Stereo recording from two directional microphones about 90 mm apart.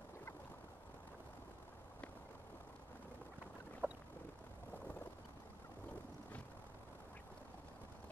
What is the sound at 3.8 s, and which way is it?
Boat, 20° right (ahead or behind).